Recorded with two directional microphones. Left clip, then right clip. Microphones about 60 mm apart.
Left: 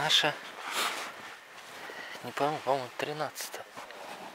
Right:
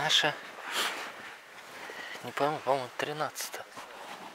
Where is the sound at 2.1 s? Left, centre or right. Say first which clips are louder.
Right 1 dB; centre.